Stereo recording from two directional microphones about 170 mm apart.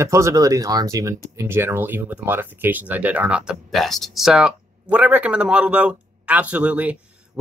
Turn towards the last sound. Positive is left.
turn(degrees=-10)  # may be behind; listen again after turning